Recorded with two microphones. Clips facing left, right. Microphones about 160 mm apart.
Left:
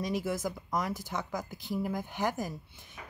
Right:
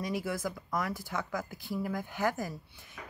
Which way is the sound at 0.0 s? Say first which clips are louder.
Left 2 dB; 20° left (ahead or behind).